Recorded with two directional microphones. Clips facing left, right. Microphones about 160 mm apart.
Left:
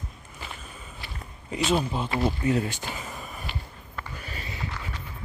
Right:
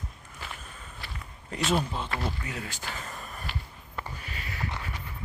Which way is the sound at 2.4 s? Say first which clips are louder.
Left 12 dB; 30° left (ahead or behind).